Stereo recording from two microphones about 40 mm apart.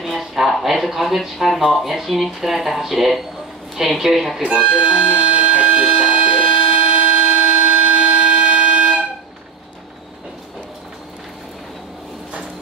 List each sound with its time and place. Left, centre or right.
0.0 s a sound: centre
0.5 s speech: centre
4.4 s music: right